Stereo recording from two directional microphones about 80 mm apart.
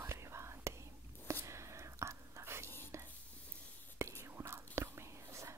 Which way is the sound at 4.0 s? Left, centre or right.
Right.